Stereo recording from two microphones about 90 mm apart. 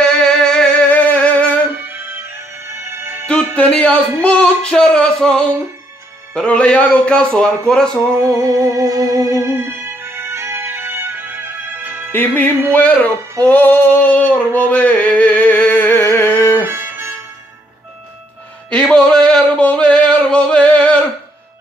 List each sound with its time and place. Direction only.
0.2 s music: 5° left (ahead or behind)
1.9 s music: 25° right (ahead or behind)
3.3 s speech: 10° left (ahead or behind)
8.2 s music: 35° right (ahead or behind)
12.1 s music: 20° left (ahead or behind)
12.7 s speech: 15° left (ahead or behind)
13.4 s male singing: 20° left (ahead or behind)
16.6 s music: 25° right (ahead or behind)
18.7 s male singing: 10° left (ahead or behind)